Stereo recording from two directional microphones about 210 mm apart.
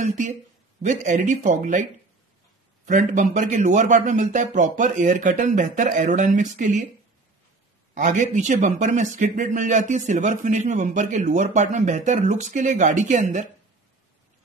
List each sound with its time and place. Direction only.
0.0 s a man's voice: 35° right (ahead or behind)
2.9 s a man's voice: 35° right (ahead or behind)
7.9 s a man's voice: 35° right (ahead or behind)